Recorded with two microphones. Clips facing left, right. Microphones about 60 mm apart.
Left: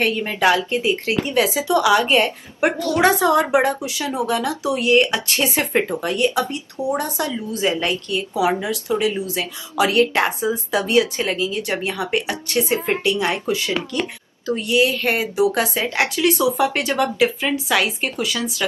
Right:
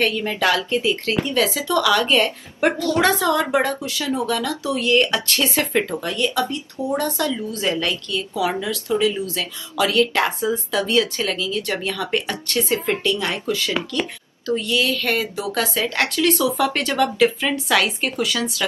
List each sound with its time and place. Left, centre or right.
0.0 s a woman's voice: centre